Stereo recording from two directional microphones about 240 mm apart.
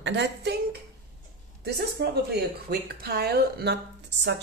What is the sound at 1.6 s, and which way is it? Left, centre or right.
Speech, right.